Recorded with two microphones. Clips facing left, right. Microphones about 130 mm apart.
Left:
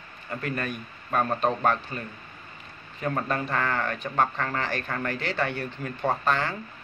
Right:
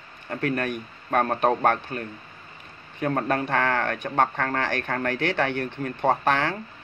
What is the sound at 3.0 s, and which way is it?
Speech, 55° right (ahead or behind).